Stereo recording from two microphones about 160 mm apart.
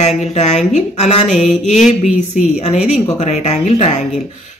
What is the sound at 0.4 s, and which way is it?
Speech, 45° left (ahead or behind).